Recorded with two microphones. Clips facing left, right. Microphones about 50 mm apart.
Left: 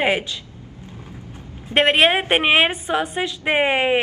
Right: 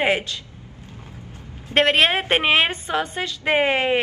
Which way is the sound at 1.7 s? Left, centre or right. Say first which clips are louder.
Left 2 dB; centre.